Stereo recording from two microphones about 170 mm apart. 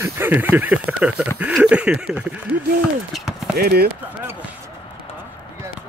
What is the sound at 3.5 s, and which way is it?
Speech, 65° right (ahead or behind).